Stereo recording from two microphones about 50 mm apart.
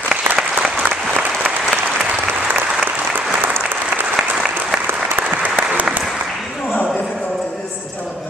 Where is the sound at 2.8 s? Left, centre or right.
Right.